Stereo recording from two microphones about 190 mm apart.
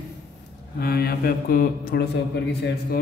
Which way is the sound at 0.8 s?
55° left (ahead or behind).